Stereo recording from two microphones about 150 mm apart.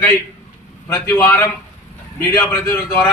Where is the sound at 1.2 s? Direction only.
15° left (ahead or behind).